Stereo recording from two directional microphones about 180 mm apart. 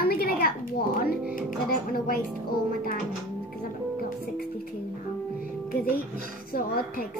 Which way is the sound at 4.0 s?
55° left (ahead or behind).